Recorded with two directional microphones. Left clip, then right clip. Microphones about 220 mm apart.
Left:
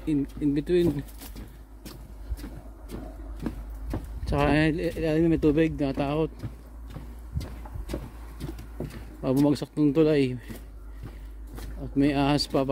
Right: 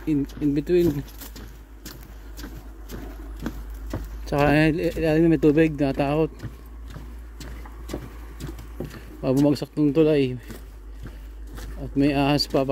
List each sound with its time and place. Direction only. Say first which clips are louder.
0.0 s speech: right 3 dB; 10° right (ahead or behind)
4.2 s speech: right 4 dB; 15° right (ahead or behind)
9.2 s speech: right 3 dB; 10° right (ahead or behind)
11.8 s speech: right 3 dB; 10° right (ahead or behind)